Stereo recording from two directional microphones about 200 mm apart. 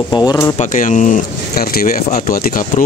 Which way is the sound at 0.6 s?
40° left (ahead or behind).